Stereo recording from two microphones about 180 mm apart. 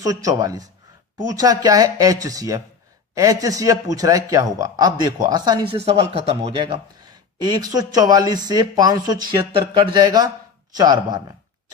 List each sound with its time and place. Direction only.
0.0 s a man's voice: 20° right (ahead or behind)